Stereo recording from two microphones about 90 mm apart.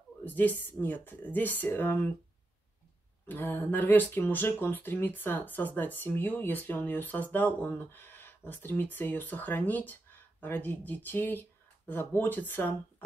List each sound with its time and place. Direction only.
0.2 s speech: 20° left (ahead or behind)
3.3 s speech: 20° left (ahead or behind)